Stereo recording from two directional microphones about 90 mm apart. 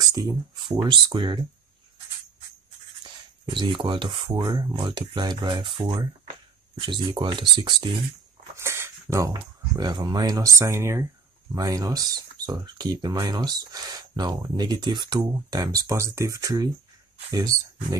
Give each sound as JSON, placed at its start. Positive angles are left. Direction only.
{"t": 0.0, "sound": "a sound", "side_deg": -40}
{"t": 0.7, "sound": "speech", "side_deg": -55}
{"t": 3.0, "sound": "speech", "side_deg": -60}
{"t": 4.4, "sound": "speech", "side_deg": -45}
{"t": 4.7, "sound": "speech", "side_deg": -60}
{"t": 8.5, "sound": "a sound", "side_deg": -30}
{"t": 9.1, "sound": "speech", "side_deg": -45}
{"t": 11.5, "sound": "speech", "side_deg": -45}